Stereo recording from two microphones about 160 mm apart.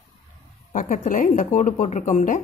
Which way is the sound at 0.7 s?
55° left (ahead or behind).